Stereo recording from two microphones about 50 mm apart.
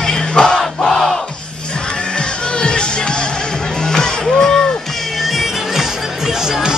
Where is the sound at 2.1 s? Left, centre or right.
Centre.